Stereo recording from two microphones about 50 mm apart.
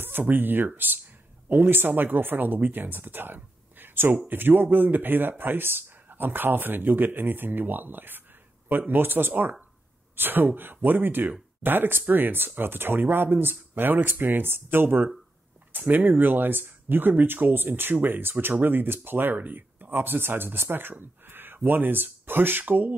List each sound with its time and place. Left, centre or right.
0.0 s speech: right
21.0 s a sound: right
21.6 s speech: right